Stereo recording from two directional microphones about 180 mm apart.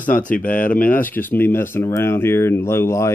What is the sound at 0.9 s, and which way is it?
Speech, 10° left (ahead or behind).